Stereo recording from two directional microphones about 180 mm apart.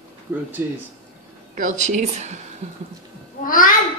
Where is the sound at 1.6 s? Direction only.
45° right (ahead or behind).